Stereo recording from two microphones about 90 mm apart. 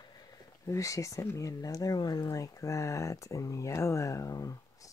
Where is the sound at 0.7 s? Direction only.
35° left (ahead or behind).